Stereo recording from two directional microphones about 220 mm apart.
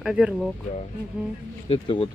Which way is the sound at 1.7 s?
25° left (ahead or behind).